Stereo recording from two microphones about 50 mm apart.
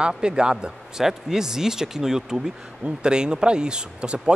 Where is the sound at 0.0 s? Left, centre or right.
Centre.